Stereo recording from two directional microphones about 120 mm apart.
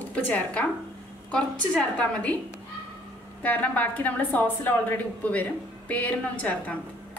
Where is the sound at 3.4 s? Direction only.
15° left (ahead or behind).